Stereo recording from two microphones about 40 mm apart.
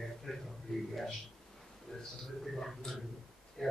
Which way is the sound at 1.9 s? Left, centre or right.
Centre.